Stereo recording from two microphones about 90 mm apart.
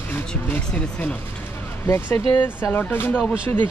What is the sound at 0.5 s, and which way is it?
Speech, 20° left (ahead or behind).